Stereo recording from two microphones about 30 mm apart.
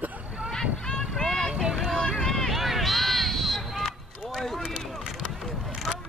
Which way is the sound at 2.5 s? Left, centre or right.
Centre.